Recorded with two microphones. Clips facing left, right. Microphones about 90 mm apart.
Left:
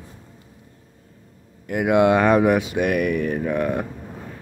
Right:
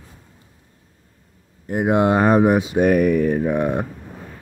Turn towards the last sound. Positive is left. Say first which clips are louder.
# right 2 dB
turn(degrees=-20)  # may be behind; listen again after turning